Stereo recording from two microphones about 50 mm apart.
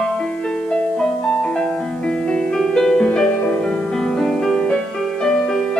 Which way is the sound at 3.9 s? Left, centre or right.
Centre.